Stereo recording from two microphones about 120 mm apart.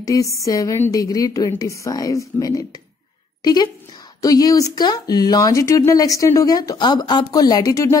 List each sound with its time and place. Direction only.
0.0 s a woman's voice: 25° left (ahead or behind)